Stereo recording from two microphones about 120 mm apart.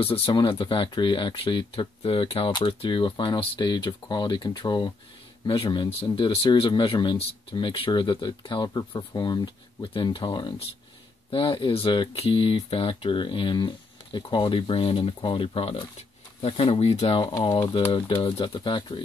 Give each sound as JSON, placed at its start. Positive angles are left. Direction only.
{"t": 0.0, "sound": "speech", "side_deg": 50}
{"t": 17.9, "sound": "speech", "side_deg": 45}